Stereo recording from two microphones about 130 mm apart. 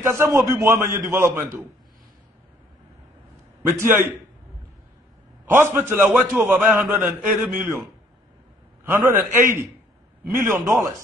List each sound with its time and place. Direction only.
0.0 s a man's voice: 20° right (ahead or behind)
3.6 s a man's voice: 15° right (ahead or behind)
5.4 s a man's voice: 15° right (ahead or behind)
8.8 s a man's voice: 20° right (ahead or behind)